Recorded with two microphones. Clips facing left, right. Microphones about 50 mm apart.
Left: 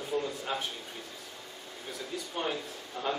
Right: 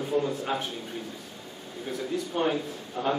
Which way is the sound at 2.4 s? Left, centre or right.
Centre.